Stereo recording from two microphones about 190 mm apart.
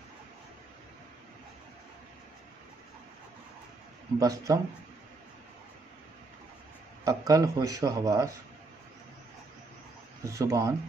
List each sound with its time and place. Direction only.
4.2 s speech: 20° right (ahead or behind)
7.1 s speech: 20° right (ahead or behind)
10.2 s speech: 15° right (ahead or behind)